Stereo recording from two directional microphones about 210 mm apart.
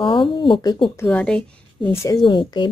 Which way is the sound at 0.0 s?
25° left (ahead or behind).